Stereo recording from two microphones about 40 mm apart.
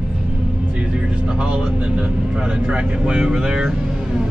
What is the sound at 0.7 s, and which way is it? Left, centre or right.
Speech, right.